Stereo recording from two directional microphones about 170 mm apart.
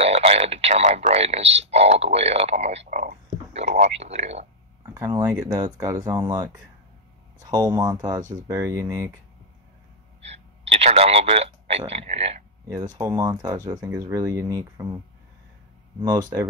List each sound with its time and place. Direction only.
0.0 s speech: 35° right (ahead or behind)
4.9 s speech: 20° right (ahead or behind)
8.2 s speech: 45° right (ahead or behind)
8.5 s speech: 15° right (ahead or behind)
10.7 s a man's voice: 35° right (ahead or behind)
12.6 s speech: 20° right (ahead or behind)
16.0 s speech: 25° right (ahead or behind)